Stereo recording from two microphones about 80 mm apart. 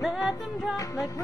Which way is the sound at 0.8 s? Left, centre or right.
Left.